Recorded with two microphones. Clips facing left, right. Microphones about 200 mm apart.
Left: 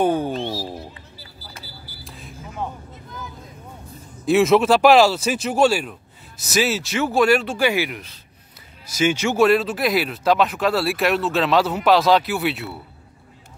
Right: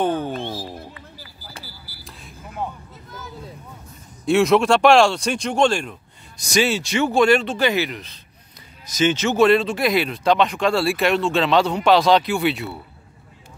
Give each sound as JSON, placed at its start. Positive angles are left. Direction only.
{"t": 0.0, "sound": "speech", "side_deg": 10}
{"t": 2.0, "sound": "a sound", "side_deg": 0}
{"t": 4.3, "sound": "speech", "side_deg": 0}